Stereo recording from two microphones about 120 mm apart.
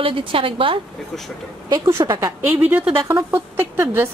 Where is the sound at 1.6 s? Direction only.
30° right (ahead or behind).